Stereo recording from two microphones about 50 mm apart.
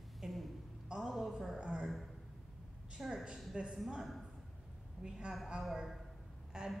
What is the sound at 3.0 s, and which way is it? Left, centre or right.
Speech, centre.